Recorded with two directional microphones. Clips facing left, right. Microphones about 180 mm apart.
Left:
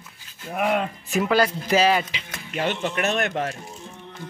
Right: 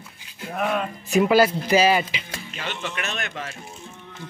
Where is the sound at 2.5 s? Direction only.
55° left (ahead or behind).